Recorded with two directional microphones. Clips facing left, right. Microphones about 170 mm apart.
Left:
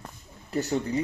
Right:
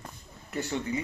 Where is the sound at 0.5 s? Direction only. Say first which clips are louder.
Left 4 dB; 40° left (ahead or behind).